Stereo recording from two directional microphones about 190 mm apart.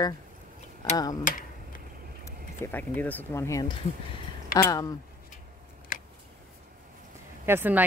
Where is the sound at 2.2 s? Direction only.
10° left (ahead or behind).